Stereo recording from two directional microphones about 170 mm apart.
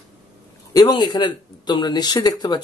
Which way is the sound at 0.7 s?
25° left (ahead or behind).